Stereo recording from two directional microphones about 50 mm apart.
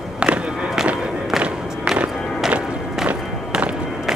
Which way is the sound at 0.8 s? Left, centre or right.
Right.